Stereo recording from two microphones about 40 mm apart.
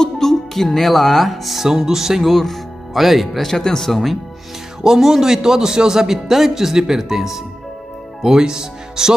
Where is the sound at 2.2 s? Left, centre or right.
Centre.